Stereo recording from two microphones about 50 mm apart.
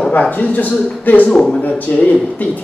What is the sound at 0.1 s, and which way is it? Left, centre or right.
Speech, left.